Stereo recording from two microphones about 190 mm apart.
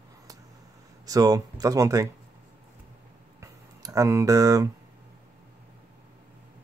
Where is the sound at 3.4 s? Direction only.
20° right (ahead or behind).